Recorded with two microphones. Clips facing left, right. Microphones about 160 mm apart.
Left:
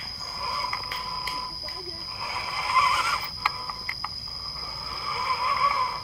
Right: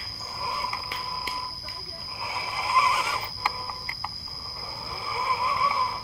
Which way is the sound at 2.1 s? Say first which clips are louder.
Right 2 dB; 15° right (ahead or behind).